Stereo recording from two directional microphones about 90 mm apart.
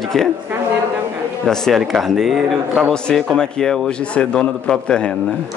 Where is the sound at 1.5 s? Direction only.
Centre (ahead or behind).